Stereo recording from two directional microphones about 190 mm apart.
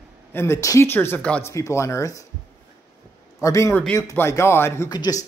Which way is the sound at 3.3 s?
15° left (ahead or behind).